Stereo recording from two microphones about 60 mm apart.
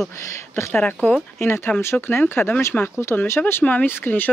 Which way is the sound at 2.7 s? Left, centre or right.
Centre.